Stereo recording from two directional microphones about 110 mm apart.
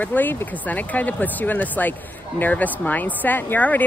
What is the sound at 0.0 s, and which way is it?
Speech, 15° left (ahead or behind).